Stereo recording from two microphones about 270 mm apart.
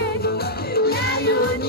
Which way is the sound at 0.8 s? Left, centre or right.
Left.